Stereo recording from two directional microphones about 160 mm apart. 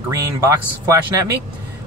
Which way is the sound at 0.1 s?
20° right (ahead or behind).